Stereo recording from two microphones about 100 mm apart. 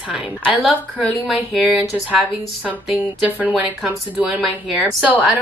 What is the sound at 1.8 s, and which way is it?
Speech, 15° right (ahead or behind).